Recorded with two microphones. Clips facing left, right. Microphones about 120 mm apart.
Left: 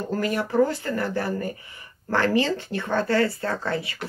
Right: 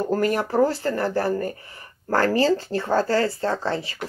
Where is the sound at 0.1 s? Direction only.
45° right (ahead or behind).